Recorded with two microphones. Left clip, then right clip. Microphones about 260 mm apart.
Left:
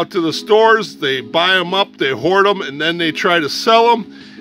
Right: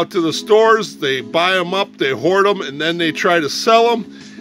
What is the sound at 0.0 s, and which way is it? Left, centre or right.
Speech, centre.